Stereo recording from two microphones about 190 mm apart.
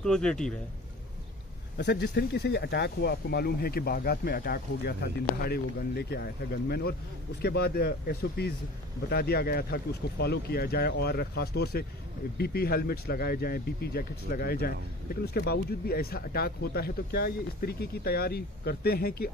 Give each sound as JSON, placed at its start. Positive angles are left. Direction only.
{"t": 0.0, "sound": "speech", "side_deg": 5}
{"t": 1.8, "sound": "speech", "side_deg": 60}